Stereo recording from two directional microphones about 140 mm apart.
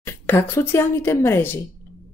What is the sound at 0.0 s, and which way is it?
A woman's voice, 20° left (ahead or behind).